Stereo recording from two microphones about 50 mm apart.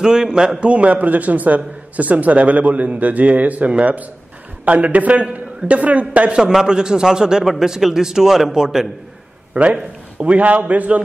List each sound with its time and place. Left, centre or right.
0.0 s a man's voice: centre
6.3 s a man's voice: centre
9.5 s a man's voice: right